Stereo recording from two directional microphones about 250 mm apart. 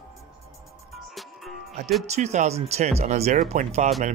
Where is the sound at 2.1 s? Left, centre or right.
Right.